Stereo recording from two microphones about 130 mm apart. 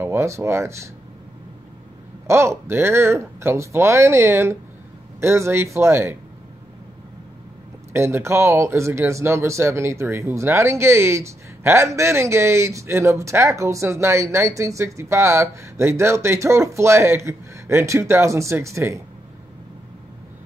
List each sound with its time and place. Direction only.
0.0 s speech: 20° right (ahead or behind)
2.2 s speech: 20° right (ahead or behind)
7.9 s speech: 20° right (ahead or behind)